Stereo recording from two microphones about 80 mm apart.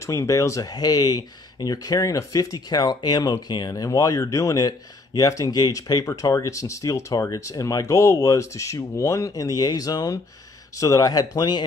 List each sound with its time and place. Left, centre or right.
0.0 s speech: left
9.3 s speech: left